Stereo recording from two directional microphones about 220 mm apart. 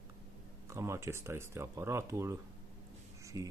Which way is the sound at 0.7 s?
10° right (ahead or behind).